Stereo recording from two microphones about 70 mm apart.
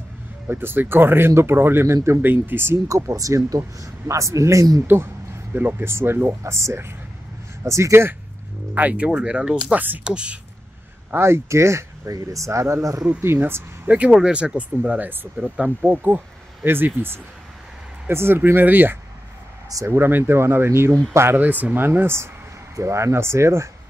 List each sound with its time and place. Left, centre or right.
0.5 s speech: right
3.0 s a man's voice: right
4.8 s speech: right
8.7 s speech: right
11.1 s speech: right
12.1 s a man's voice: right
13.0 s speech: right
21.4 s a man's voice: right